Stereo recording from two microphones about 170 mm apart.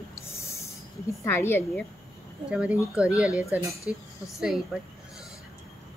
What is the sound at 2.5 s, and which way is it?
Speech, 5° right (ahead or behind).